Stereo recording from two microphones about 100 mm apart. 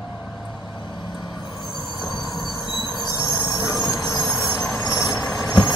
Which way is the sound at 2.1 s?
45° left (ahead or behind).